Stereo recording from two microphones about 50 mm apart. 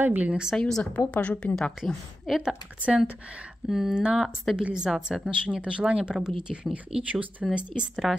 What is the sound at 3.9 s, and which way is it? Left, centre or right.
Speech, centre.